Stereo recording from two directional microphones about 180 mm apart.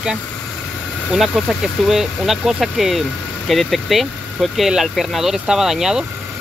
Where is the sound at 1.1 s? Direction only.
Centre (ahead or behind).